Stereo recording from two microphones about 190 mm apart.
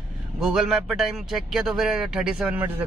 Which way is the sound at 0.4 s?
5° right (ahead or behind).